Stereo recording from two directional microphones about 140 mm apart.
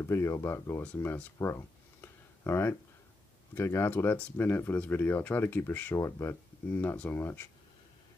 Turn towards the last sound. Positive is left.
turn(degrees=15)  # may be behind; listen again after turning